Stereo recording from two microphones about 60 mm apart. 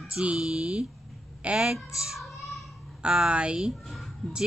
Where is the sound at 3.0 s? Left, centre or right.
Centre.